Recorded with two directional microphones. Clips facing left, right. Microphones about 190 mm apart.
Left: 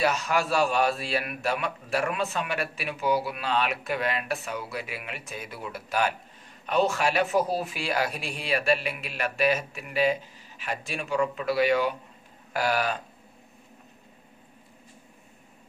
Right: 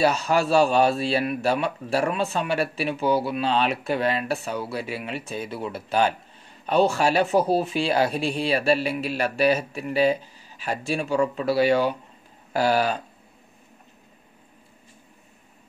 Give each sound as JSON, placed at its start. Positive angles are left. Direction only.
{"t": 0.0, "sound": "a man's voice", "side_deg": -30}